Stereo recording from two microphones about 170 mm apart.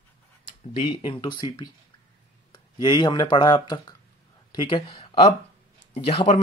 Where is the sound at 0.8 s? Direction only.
30° left (ahead or behind).